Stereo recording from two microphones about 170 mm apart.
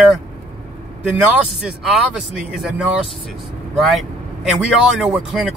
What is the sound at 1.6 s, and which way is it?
Speech, 5° right (ahead or behind).